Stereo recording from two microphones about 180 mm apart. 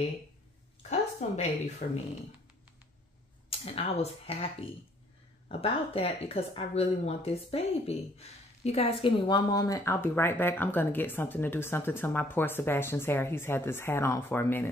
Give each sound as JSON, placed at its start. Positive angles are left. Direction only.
{"t": 0.8, "sound": "speech", "side_deg": 40}
{"t": 3.4, "sound": "speech", "side_deg": 35}